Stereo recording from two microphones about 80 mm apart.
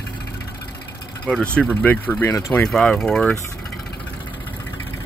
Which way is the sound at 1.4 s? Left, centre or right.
Centre.